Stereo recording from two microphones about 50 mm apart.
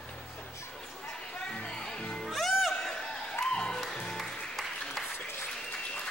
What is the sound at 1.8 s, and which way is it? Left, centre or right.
Music, centre.